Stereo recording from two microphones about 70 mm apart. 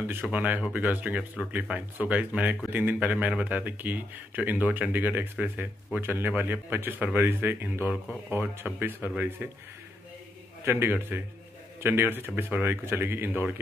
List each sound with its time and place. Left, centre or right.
0.0 s speech: right
10.6 s speech: right